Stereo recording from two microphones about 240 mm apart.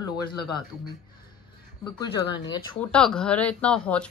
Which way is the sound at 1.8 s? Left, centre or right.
Centre.